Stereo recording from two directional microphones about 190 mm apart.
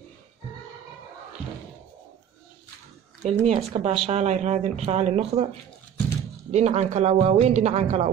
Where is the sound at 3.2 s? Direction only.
35° right (ahead or behind).